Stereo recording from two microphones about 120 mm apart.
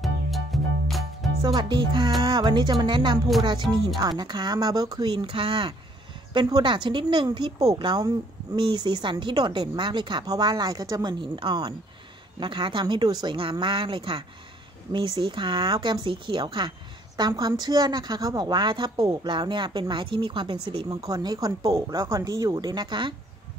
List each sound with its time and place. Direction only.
0.0 s music: centre (ahead or behind)
1.4 s a woman's voice: 40° right (ahead or behind)
4.2 s a woman's voice: 35° right (ahead or behind)
5.1 s a woman's voice: 45° right (ahead or behind)
20.9 s a woman's voice: 30° right (ahead or behind)